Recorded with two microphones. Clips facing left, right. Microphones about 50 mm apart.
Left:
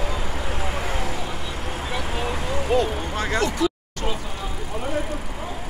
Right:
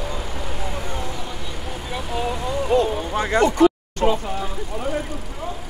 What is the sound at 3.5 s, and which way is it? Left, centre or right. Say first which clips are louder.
Vehicle: right 8 dB; right.